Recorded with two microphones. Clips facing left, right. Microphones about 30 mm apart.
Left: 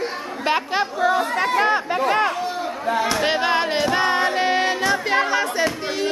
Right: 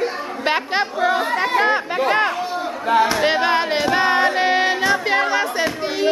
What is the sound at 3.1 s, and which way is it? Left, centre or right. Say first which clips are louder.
Music: right 2 dB; centre.